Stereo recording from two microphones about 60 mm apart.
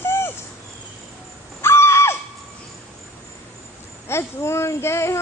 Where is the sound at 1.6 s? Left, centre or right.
Left.